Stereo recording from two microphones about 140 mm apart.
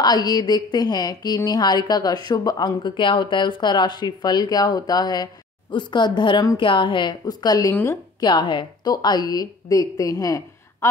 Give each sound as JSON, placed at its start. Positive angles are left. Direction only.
{"t": 0.0, "sound": "a woman's voice", "side_deg": 30}
{"t": 7.7, "sound": "speech", "side_deg": 15}
{"t": 8.2, "sound": "a woman's voice", "side_deg": 30}